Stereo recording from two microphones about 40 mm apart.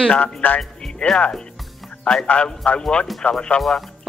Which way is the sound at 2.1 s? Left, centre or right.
Left.